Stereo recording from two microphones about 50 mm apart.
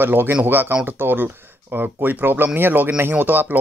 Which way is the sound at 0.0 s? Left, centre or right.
Right.